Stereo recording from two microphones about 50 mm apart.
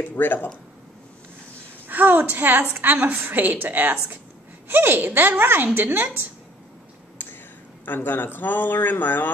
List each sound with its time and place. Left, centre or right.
0.1 s speech: left
1.9 s a woman's voice: right
7.8 s speech: left